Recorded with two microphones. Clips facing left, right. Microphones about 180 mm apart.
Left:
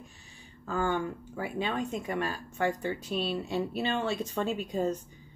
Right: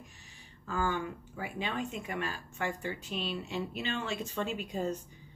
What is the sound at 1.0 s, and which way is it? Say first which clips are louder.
Speech: left 4 dB; 45° left (ahead or behind).